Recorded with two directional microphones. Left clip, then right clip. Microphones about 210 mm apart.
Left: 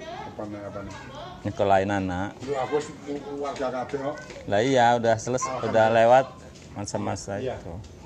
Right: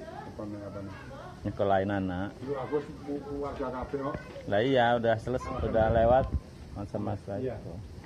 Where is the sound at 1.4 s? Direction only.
20° left (ahead or behind).